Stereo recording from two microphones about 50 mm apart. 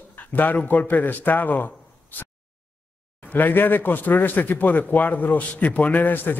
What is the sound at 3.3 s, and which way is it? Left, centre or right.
Speech, left.